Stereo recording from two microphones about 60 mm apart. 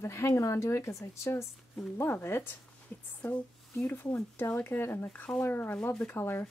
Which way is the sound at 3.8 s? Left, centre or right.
Left.